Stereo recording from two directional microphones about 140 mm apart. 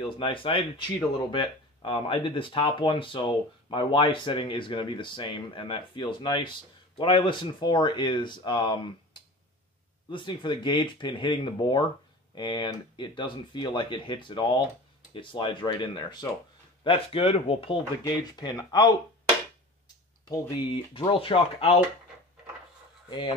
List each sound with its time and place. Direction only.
0.0 s speech: 35° left (ahead or behind)
16.8 s speech: 40° left (ahead or behind)
18.0 s speech: 30° left (ahead or behind)
20.9 s speech: 40° left (ahead or behind)
23.0 s speech: 35° left (ahead or behind)